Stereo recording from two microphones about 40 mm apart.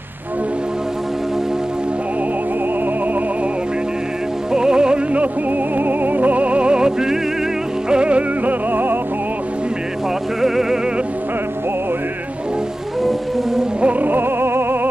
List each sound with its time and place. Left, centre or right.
4.5 s music: centre
5.8 s music: right; by 7.2 s centre
7.9 s music: right
8.5 s music: right
10.4 s music: centre
13.7 s music: right
14.0 s music: right